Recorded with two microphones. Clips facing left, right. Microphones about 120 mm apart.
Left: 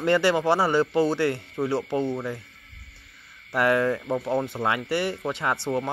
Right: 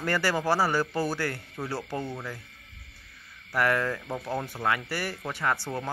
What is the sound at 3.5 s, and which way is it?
A man's voice, 25° left (ahead or behind).